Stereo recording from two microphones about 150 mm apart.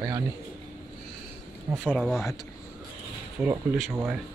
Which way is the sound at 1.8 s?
Centre (ahead or behind).